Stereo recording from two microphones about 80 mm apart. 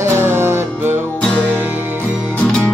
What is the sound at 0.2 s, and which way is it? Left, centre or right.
Music, right.